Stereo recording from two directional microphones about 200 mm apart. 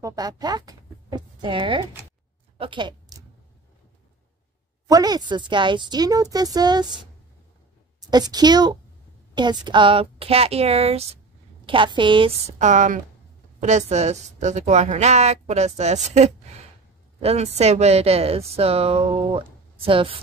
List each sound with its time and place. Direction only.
0.0 s speech: 20° right (ahead or behind)
2.5 s a sound: 25° right (ahead or behind)
4.8 s speech: 20° right (ahead or behind)
8.0 s a woman's voice: 20° right (ahead or behind)